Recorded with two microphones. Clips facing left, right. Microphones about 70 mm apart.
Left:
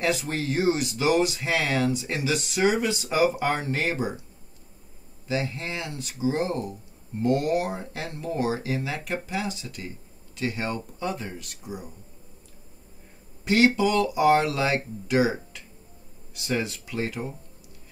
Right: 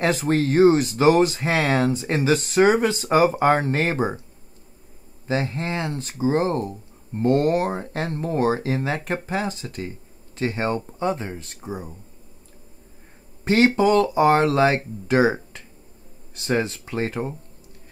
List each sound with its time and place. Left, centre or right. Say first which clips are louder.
0.0 s speech: right 6 dB; right
5.2 s speech: right 4 dB; right
13.4 s speech: right 3 dB; right